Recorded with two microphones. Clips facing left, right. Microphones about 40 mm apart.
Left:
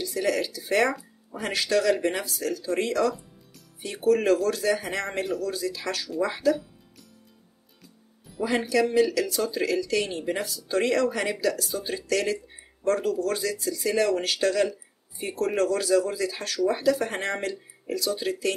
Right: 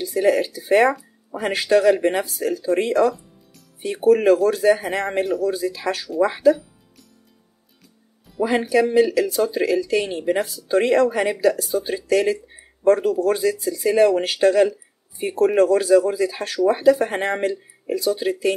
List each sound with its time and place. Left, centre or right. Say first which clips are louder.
0.0 s speech: right 7 dB; right
8.4 s speech: right 5 dB; centre